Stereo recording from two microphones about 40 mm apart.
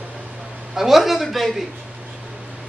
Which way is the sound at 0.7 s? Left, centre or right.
Centre.